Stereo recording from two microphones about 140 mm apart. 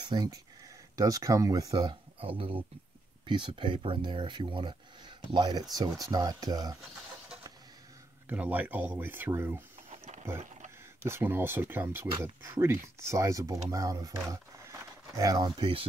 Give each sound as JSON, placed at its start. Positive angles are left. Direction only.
{"t": 0.0, "sound": "speech", "side_deg": -30}
{"t": 8.3, "sound": "speech", "side_deg": -10}
{"t": 9.8, "sound": "a sound", "side_deg": -60}
{"t": 11.0, "sound": "speech", "side_deg": -15}